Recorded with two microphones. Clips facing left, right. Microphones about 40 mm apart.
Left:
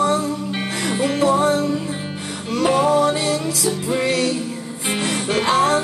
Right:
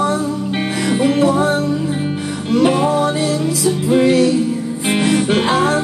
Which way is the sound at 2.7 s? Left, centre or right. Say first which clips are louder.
Left 2 dB; centre.